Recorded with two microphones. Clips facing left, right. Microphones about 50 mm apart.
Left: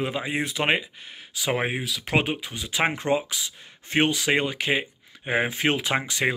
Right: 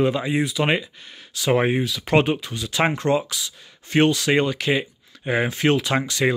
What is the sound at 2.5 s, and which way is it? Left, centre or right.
Speech, centre.